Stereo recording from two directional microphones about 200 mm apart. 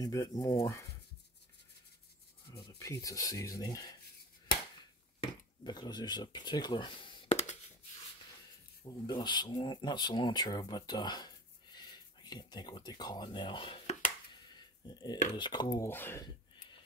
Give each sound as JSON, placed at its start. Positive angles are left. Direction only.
{"t": 0.0, "sound": "speech", "side_deg": 15}
{"t": 2.5, "sound": "speech", "side_deg": 20}
{"t": 5.2, "sound": "speech", "side_deg": 20}
{"t": 8.8, "sound": "speech", "side_deg": 20}
{"t": 14.9, "sound": "dishes", "side_deg": 20}
{"t": 15.3, "sound": "speech", "side_deg": 20}